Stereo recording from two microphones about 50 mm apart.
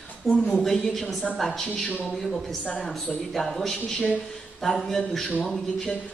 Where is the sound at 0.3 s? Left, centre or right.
Centre.